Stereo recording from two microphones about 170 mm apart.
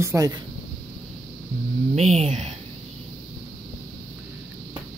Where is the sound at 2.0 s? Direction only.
40° right (ahead or behind).